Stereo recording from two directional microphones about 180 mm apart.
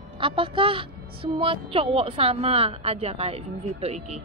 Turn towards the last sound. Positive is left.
turn(degrees=-35)  # may be behind; listen again after turning